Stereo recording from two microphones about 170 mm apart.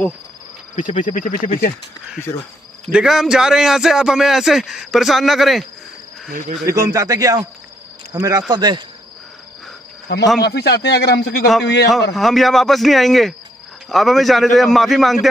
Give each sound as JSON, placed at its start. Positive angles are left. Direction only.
{"t": 0.7, "sound": "speech", "side_deg": 50}
{"t": 2.9, "sound": "a man's voice", "side_deg": -5}
{"t": 6.6, "sound": "speech", "side_deg": -20}
{"t": 10.1, "sound": "speech", "side_deg": 85}
{"t": 10.4, "sound": "speech", "side_deg": 70}
{"t": 11.6, "sound": "a man's voice", "side_deg": 90}
{"t": 12.2, "sound": "a man's voice", "side_deg": 0}